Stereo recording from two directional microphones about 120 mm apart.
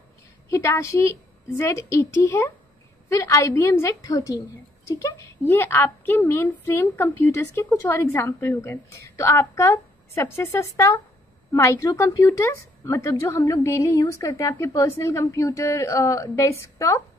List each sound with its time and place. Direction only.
0.5 s a woman's voice: 25° left (ahead or behind)